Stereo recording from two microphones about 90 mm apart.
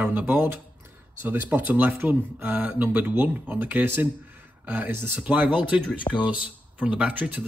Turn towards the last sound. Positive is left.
turn(degrees=-15)  # may be behind; listen again after turning